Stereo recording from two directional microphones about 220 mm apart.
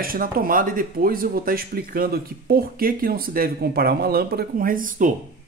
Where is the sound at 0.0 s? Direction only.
40° right (ahead or behind).